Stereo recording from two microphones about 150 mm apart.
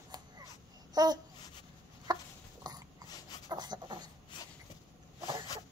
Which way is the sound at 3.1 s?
25° left (ahead or behind).